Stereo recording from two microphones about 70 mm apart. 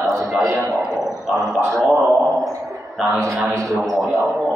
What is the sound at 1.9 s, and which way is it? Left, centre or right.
Speech, right.